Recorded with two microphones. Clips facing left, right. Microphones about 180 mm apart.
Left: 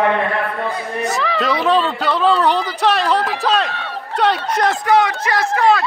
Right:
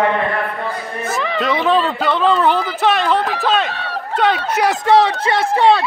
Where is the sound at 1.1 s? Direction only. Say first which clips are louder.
Right 1 dB; centre (ahead or behind).